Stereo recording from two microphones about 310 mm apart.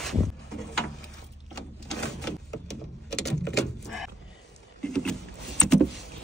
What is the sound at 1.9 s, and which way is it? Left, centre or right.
Printer, centre.